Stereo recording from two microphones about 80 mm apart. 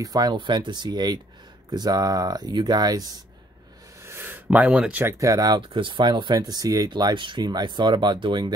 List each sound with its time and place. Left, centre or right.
0.0 s speech: right
0.4 s speech: right
4.0 s a sound: right; by 5.0 s centre
5.0 s speech: right
5.6 s speech: right
6.9 s speech: right
7.4 s speech: right